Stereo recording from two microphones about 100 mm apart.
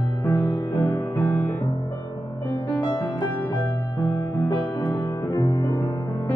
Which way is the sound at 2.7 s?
45° left (ahead or behind).